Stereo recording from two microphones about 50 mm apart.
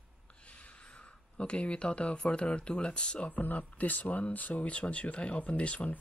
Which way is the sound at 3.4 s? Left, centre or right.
Left.